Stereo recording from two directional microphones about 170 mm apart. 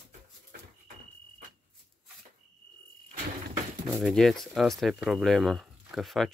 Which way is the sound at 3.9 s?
Centre (ahead or behind).